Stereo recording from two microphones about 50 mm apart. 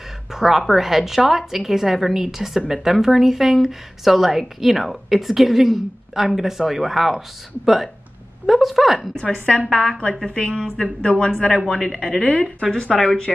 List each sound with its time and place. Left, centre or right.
0.3 s speech: centre
9.2 s a woman's voice: left
9.7 s speech: centre
10.2 s a woman's voice: centre
12.9 s speech: centre